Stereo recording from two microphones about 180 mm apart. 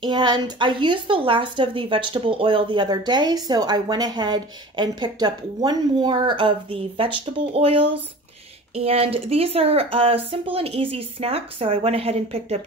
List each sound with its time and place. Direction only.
0.0 s a woman's voice: 25° right (ahead or behind)